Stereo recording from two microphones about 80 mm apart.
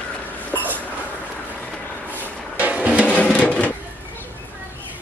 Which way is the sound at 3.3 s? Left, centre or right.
Centre.